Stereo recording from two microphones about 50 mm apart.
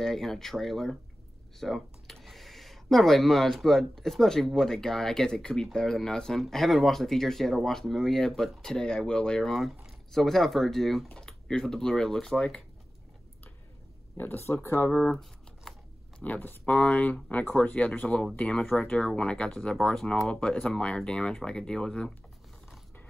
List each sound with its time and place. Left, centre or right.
0.0 s speech: centre
6.4 s speech: centre
9.5 s speech: centre
14.1 s speech: left
14.9 s shuffling cards: centre
16.2 s speech: left
16.7 s speech: left